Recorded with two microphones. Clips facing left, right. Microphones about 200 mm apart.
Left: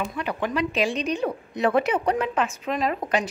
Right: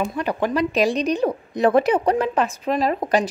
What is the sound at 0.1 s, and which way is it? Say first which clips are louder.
Speech: right 5 dB; 40° right (ahead or behind).